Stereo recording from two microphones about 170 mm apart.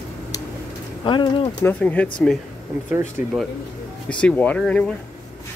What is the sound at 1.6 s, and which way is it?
Speech, 10° left (ahead or behind).